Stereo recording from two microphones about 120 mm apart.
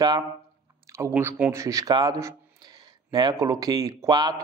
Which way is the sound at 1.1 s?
20° right (ahead or behind).